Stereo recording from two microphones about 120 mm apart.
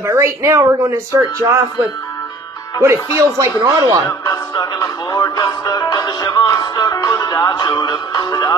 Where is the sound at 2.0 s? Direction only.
25° left (ahead or behind).